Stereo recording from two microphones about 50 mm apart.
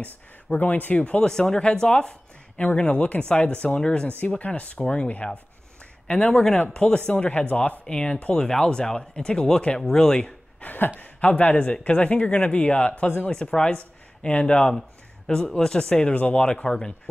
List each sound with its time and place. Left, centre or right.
0.0 s speech: left
1.2 s speech: centre
8.4 s speech: centre
9.8 s speech: centre
10.6 s a sound: left
11.0 s speech: left
14.7 s speech: centre
16.4 s speech: centre